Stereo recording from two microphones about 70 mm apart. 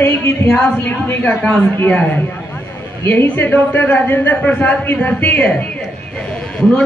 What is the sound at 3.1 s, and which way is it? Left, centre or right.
Speech, left.